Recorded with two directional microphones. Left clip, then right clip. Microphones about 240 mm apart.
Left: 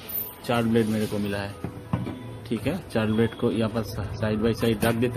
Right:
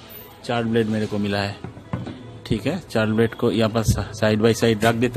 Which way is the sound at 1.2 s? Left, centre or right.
Right.